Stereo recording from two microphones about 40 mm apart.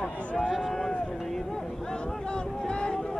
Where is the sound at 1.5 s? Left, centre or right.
Centre.